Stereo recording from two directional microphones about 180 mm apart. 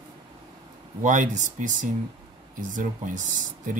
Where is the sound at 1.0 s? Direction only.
45° right (ahead or behind).